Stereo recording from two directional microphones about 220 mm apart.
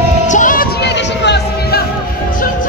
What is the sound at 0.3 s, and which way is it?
Music, 35° left (ahead or behind).